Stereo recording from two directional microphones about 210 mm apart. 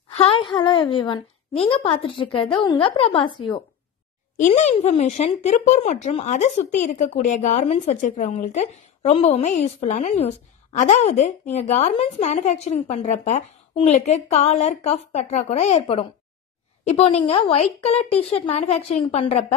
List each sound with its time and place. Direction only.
0.1 s a woman's voice: 30° left (ahead or behind)
4.4 s a woman's voice: 35° left (ahead or behind)